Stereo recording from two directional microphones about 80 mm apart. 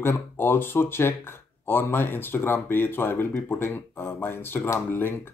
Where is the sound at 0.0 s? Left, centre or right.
Left.